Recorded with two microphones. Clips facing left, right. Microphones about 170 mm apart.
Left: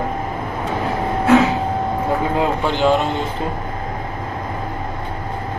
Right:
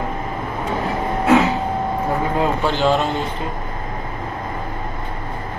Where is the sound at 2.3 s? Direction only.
15° left (ahead or behind).